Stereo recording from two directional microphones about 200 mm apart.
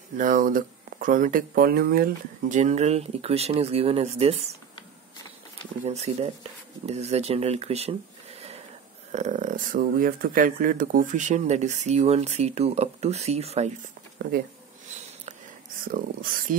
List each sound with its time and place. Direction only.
0.2 s speech: 45° right (ahead or behind)
5.9 s speech: 30° right (ahead or behind)
14.2 s speech: 55° right (ahead or behind)
15.9 s speech: 45° right (ahead or behind)